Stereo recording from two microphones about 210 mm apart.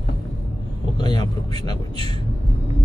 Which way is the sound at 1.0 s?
20° left (ahead or behind).